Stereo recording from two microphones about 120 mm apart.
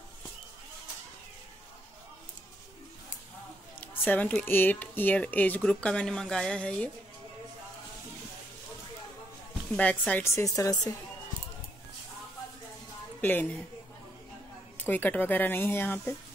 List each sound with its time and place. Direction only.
3.8 s speech: 15° left (ahead or behind)
9.8 s speech: 10° left (ahead or behind)
10.2 s speech: 25° left (ahead or behind)
13.2 s speech: 15° left (ahead or behind)
14.8 s speech: 15° left (ahead or behind)